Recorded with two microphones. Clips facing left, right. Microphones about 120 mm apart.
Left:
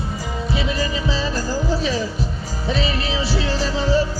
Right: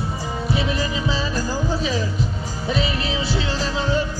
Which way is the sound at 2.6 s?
30° left (ahead or behind).